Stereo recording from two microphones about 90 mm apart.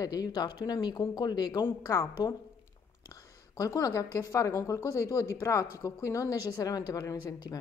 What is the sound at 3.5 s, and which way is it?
A woman's voice, 40° left (ahead or behind).